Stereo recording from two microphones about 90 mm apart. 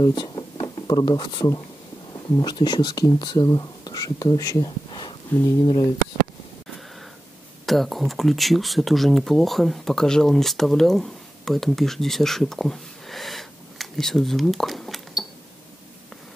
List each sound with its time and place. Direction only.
0.0 s a sound: 50° left (ahead or behind)
2.3 s speech: 50° left (ahead or behind)
5.3 s speech: 20° left (ahead or behind)
7.6 s speech: centre (ahead or behind)